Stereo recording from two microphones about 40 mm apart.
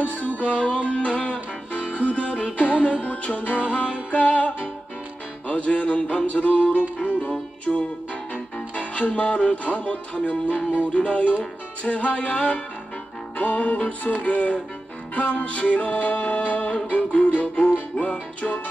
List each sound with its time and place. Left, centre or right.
0.0 s music: left
8.7 s music: left